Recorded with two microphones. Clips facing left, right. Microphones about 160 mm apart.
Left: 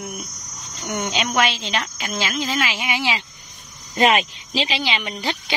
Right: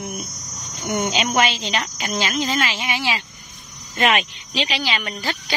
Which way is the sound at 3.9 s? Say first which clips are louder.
Left 2 dB; 25° left (ahead or behind).